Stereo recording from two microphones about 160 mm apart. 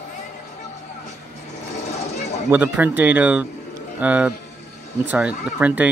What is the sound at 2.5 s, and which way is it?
Speech, 10° right (ahead or behind).